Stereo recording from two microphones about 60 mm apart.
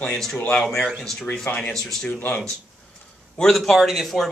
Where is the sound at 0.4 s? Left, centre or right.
Left.